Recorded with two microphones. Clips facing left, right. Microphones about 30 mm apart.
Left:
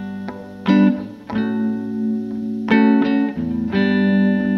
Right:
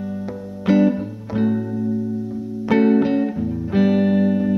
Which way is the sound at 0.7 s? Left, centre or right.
Left.